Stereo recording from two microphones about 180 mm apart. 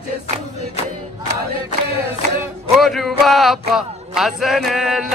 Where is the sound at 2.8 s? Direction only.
Centre (ahead or behind).